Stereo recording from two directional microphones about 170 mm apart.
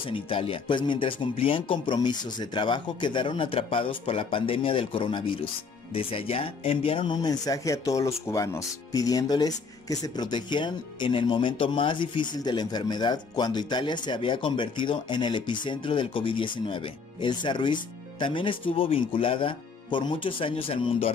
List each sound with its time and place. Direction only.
0.0 s speech: 30° left (ahead or behind)